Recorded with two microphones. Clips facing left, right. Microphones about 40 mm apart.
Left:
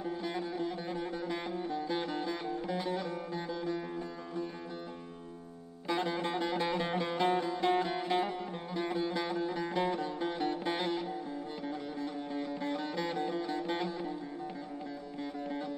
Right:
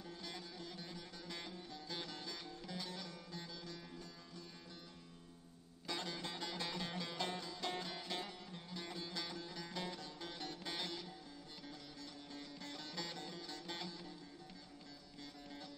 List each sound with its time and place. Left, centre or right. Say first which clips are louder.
0.0 s music: left 14 dB; left
5.9 s music: left 12 dB; left